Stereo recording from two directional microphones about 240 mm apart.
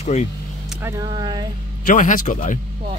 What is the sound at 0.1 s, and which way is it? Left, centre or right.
Speech, left.